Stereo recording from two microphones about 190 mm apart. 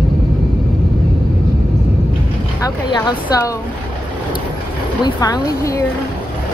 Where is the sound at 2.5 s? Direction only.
20° left (ahead or behind).